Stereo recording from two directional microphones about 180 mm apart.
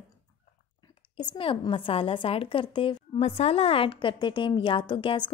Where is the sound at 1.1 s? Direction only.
25° left (ahead or behind).